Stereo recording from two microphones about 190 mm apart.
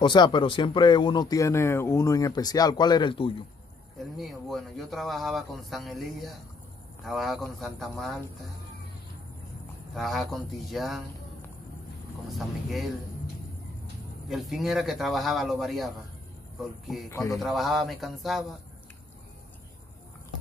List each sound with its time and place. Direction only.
0.0 s speech: 25° left (ahead or behind)
4.2 s speech: centre (ahead or behind)
9.9 s speech: centre (ahead or behind)
12.3 s speech: centre (ahead or behind)
14.3 s speech: centre (ahead or behind)
17.1 s a man's voice: 15° left (ahead or behind)
17.4 s speech: centre (ahead or behind)